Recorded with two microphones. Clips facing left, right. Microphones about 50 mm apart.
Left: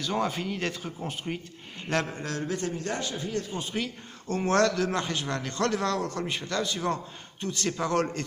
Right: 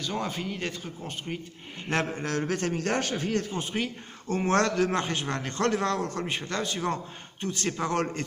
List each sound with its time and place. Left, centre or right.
0.0 s speech: centre
1.9 s a man's voice: right
2.4 s a man's voice: right
3.7 s a man's voice: right